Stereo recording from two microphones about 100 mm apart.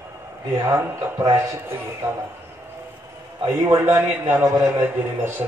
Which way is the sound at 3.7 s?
25° right (ahead or behind).